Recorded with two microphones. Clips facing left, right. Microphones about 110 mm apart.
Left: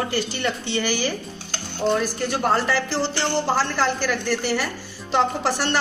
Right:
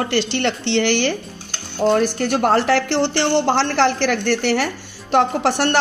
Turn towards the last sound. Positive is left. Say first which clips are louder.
# right 5 dB
turn(degrees=-65)  # may be behind; listen again after turning